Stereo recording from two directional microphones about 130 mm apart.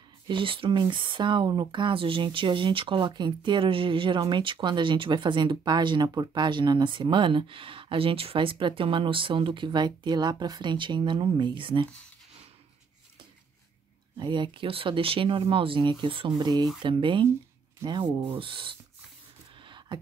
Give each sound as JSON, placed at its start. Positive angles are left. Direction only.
{"t": 0.3, "sound": "speech", "side_deg": -40}
{"t": 14.1, "sound": "speech", "side_deg": -35}
{"t": 19.6, "sound": "a sound", "side_deg": -35}